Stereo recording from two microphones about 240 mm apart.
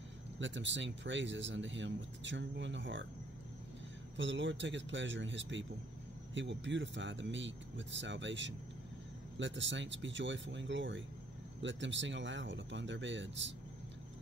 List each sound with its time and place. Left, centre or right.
0.4 s speech: right
4.2 s speech: right